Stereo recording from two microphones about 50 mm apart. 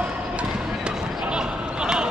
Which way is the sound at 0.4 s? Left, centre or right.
Right.